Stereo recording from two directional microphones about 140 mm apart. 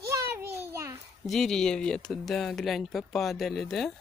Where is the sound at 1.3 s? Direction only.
5° left (ahead or behind).